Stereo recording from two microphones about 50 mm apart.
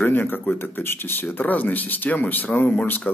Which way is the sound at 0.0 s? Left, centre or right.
Left.